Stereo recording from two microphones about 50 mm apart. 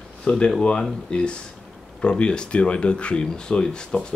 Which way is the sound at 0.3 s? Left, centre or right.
Left.